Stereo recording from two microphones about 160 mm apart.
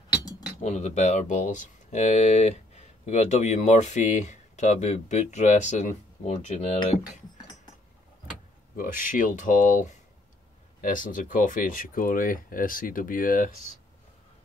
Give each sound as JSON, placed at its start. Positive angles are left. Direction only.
{"t": 0.1, "sound": "cutlery", "side_deg": 25}
{"t": 0.6, "sound": "speech", "side_deg": 45}
{"t": 8.7, "sound": "speech", "side_deg": 55}